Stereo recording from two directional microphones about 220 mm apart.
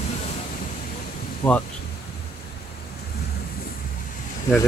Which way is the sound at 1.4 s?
5° left (ahead or behind).